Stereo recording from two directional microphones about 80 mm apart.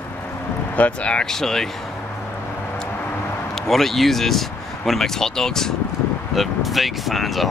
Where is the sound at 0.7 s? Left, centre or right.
Centre.